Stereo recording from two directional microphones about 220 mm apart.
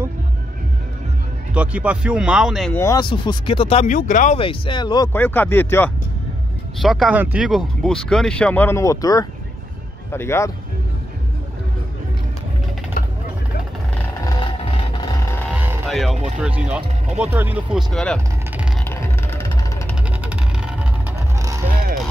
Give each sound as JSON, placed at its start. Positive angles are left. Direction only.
{"t": 1.5, "sound": "speech", "side_deg": -5}
{"t": 2.8, "sound": "speech", "side_deg": 15}
{"t": 4.4, "sound": "speech", "side_deg": 25}
{"t": 6.8, "sound": "speech", "side_deg": 0}
{"t": 13.0, "sound": "vehicle", "side_deg": 40}
{"t": 15.5, "sound": "music", "side_deg": -5}
{"t": 16.3, "sound": "speech", "side_deg": -5}
{"t": 18.9, "sound": "music", "side_deg": 10}
{"t": 20.1, "sound": "vehicle", "side_deg": -5}
{"t": 21.4, "sound": "music", "side_deg": -15}